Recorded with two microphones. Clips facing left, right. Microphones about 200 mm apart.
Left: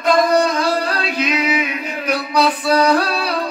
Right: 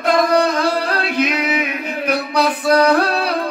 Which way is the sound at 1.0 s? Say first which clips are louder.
Right 1 dB; 55° right (ahead or behind).